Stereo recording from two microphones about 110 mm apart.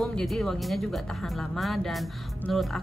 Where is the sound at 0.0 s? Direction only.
5° left (ahead or behind).